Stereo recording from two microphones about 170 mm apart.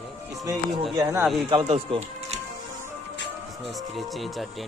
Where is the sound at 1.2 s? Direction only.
Centre (ahead or behind).